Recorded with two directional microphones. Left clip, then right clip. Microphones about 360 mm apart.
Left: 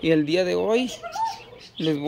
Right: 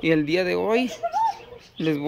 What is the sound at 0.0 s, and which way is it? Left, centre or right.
Speech, centre.